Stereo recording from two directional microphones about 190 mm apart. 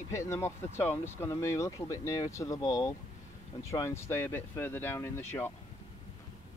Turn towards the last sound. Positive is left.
turn(degrees=10)  # may be behind; listen again after turning